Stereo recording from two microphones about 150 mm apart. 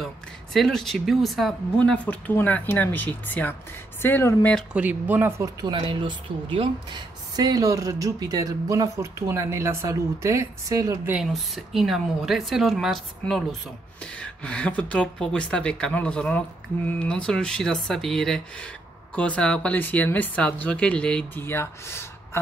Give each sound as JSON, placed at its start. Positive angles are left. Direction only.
{"t": 0.0, "sound": "speech", "side_deg": 0}
{"t": 4.7, "sound": "speech", "side_deg": -10}
{"t": 5.4, "sound": "speech", "side_deg": -25}
{"t": 11.1, "sound": "speech", "side_deg": 0}